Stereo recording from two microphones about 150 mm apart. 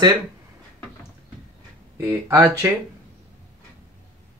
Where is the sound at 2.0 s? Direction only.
15° right (ahead or behind).